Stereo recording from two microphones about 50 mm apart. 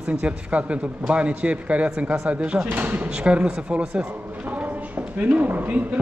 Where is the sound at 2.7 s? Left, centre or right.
Right.